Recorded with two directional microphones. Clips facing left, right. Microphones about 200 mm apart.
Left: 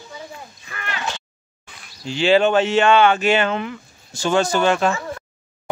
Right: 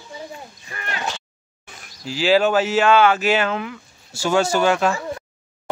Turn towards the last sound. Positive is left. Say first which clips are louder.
# even
turn(degrees=-5)  # may be behind; listen again after turning